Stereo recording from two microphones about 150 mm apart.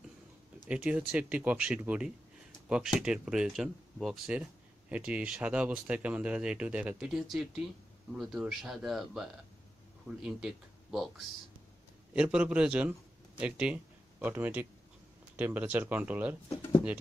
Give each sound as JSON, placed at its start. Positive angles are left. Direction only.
{"t": 0.7, "sound": "speech", "side_deg": -10}
{"t": 16.4, "sound": "speech", "side_deg": 20}